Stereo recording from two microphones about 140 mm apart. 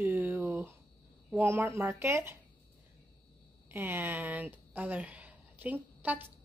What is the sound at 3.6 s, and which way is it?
A woman's voice, 15° right (ahead or behind).